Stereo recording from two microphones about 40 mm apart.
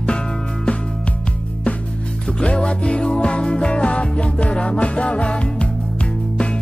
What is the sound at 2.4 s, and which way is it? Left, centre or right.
Music, left.